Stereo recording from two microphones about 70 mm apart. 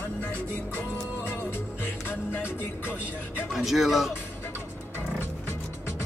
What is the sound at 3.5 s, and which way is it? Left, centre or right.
Speech, centre.